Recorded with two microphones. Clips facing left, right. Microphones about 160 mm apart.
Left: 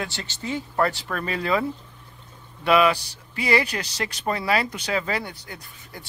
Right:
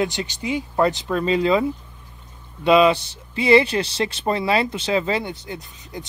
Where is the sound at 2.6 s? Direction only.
20° right (ahead or behind).